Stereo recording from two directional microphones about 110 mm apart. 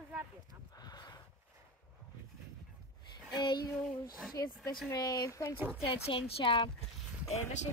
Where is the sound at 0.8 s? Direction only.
40° left (ahead or behind).